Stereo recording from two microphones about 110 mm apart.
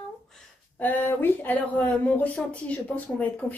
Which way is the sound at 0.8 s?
15° left (ahead or behind).